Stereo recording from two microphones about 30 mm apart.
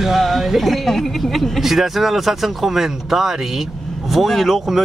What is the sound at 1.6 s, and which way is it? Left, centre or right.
Speech, centre.